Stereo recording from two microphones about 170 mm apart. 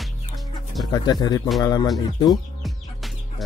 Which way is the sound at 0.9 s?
25° left (ahead or behind).